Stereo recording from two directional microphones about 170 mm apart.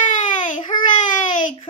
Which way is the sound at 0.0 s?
50° left (ahead or behind).